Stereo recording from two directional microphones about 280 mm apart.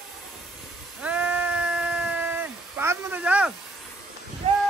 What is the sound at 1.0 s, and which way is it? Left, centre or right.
Sheep, centre.